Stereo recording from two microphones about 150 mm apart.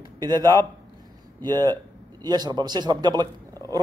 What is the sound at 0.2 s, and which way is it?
Speech, 25° right (ahead or behind).